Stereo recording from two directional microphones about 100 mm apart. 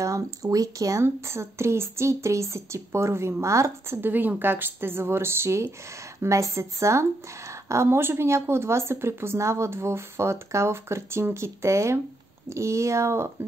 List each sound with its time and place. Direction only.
0.0 s speech: 35° right (ahead or behind)